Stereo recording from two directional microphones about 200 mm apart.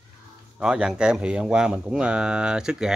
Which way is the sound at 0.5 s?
5° right (ahead or behind).